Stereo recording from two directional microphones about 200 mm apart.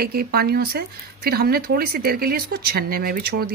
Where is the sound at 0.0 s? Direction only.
50° right (ahead or behind).